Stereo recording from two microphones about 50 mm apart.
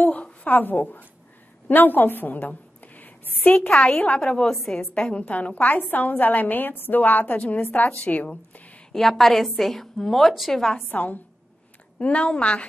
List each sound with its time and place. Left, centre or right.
0.0 s a woman's voice: left
3.7 s a woman's voice: left
8.9 s a woman's voice: centre
10.9 s a woman's voice: left